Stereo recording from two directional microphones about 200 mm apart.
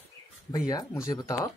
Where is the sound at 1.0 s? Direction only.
15° left (ahead or behind).